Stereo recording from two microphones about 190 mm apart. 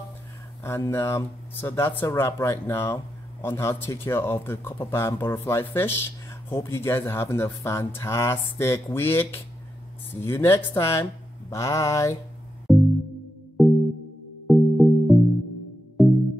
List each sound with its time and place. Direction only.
0.7 s speech: 15° left (ahead or behind)
12.7 s music: centre (ahead or behind)